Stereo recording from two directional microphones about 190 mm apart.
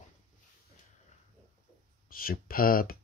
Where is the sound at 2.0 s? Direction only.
50° left (ahead or behind).